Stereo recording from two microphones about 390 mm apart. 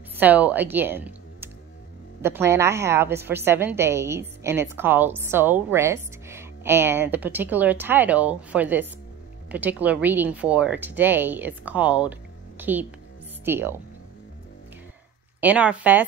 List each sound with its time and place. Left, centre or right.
0.1 s a woman's voice: centre
15.4 s a woman's voice: centre